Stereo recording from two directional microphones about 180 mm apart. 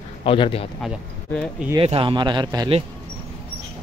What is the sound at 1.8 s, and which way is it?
A man's voice, 30° right (ahead or behind).